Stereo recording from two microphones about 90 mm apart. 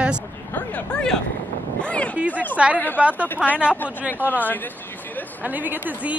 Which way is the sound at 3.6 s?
20° left (ahead or behind).